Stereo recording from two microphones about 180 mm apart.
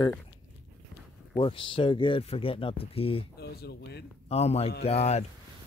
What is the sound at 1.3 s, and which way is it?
Speech, 30° left (ahead or behind).